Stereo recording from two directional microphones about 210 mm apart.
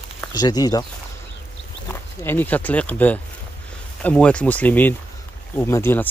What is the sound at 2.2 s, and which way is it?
Speech, 10° left (ahead or behind).